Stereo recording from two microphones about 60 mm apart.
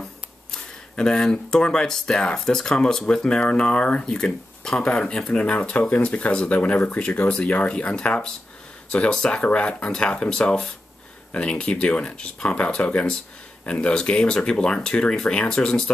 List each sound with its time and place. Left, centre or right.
0.5 s speech: centre; by 6.0 s left
6.0 s speech: centre